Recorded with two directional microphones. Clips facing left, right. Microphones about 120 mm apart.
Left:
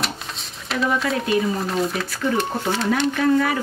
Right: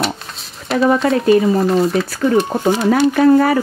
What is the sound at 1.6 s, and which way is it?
Speech, centre (ahead or behind).